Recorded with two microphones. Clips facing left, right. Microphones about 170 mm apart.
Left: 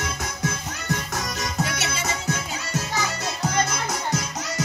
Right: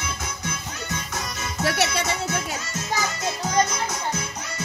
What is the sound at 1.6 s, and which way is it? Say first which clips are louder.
Music: right 11 dB; 65° right (ahead or behind).